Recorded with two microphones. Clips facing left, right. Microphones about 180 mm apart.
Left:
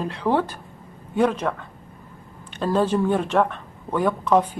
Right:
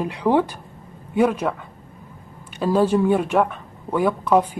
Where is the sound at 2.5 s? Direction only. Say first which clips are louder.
Right 3 dB; 10° right (ahead or behind).